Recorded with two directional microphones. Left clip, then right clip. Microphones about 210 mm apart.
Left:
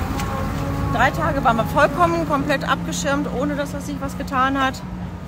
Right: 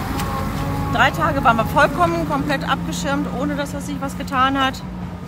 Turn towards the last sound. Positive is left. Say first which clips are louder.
# right 2 dB
turn(degrees=5)  # may be behind; listen again after turning